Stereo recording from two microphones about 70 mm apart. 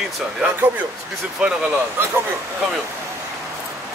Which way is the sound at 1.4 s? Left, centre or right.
Centre.